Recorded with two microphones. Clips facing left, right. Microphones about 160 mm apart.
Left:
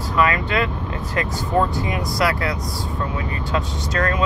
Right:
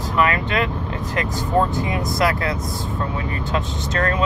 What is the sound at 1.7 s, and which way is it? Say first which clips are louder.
Speech: right 1 dB; 20° right (ahead or behind).